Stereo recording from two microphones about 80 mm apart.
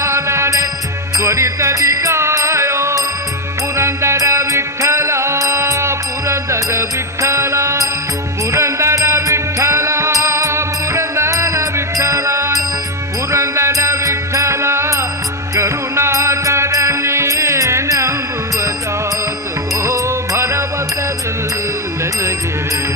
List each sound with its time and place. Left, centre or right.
0.0 s music: right
19.8 s music: right